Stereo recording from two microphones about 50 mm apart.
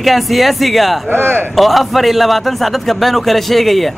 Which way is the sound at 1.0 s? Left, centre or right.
Right.